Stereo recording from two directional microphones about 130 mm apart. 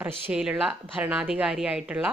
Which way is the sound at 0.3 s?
5° right (ahead or behind).